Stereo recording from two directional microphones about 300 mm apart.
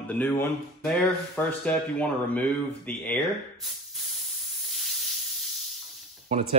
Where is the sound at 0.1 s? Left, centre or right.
Centre.